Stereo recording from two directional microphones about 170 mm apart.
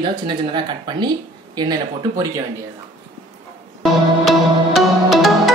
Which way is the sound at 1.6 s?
20° right (ahead or behind).